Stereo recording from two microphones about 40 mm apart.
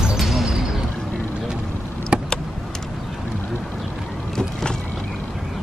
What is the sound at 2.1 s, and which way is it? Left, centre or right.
Vehicle, right.